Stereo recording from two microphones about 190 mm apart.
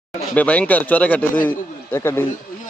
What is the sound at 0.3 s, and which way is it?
A man's voice, 5° left (ahead or behind).